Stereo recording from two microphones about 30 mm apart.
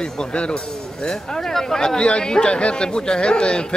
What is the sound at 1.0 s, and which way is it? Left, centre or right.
Speech, centre.